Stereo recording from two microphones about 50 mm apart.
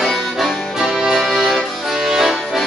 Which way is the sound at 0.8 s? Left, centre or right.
Centre.